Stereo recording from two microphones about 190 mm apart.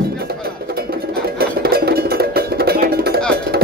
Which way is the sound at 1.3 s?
55° right (ahead or behind).